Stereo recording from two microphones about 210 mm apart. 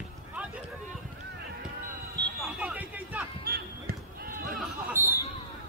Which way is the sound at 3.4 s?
45° right (ahead or behind).